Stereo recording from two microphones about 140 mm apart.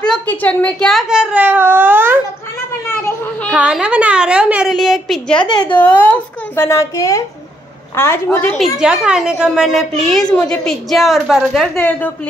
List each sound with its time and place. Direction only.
0.0 s speech: 10° left (ahead or behind); by 2.1 s 15° right (ahead or behind)
3.5 s a woman's voice: 10° right (ahead or behind); by 8.5 s 10° left (ahead or behind)
8.5 s speech: 5° right (ahead or behind)